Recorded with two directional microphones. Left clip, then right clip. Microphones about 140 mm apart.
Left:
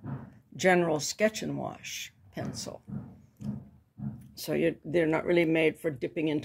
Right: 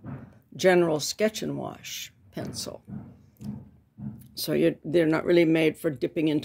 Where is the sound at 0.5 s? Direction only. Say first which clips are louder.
Right 4 dB; 65° right (ahead or behind).